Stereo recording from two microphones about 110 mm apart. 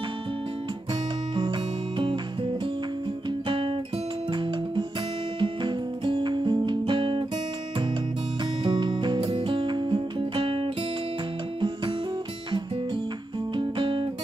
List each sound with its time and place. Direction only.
1.3 s music: 45° right (ahead or behind)
3.3 s guitar: 50° right (ahead or behind)
4.3 s music: 45° right (ahead or behind)
8.6 s music: 50° right (ahead or behind)
13.6 s music: 50° right (ahead or behind)